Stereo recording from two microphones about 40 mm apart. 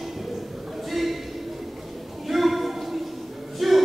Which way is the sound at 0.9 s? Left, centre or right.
Centre.